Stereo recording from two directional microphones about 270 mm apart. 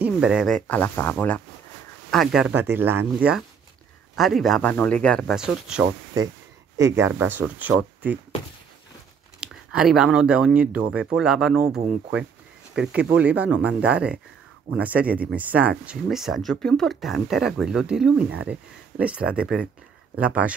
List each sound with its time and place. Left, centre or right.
0.0 s speech: centre
9.4 s speech: centre
18.3 s speech: right
18.9 s speech: centre